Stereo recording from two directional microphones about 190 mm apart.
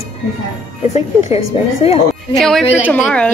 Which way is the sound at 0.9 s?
35° left (ahead or behind).